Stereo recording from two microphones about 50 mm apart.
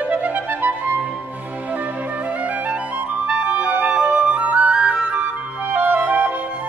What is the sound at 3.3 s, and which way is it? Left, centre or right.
Clarinet, right.